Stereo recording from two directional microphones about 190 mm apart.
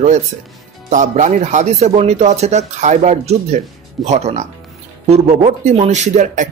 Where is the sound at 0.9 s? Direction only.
40° right (ahead or behind).